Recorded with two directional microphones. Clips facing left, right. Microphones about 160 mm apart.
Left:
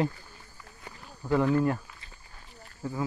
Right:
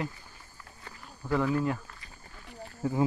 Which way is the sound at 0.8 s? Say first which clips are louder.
Left 3 dB; 15° left (ahead or behind).